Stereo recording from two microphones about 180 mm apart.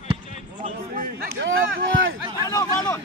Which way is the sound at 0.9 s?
65° right (ahead or behind).